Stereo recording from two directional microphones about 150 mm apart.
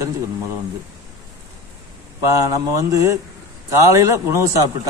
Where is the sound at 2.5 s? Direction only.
20° right (ahead or behind).